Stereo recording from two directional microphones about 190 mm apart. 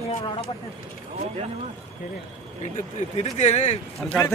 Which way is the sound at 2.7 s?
35° left (ahead or behind).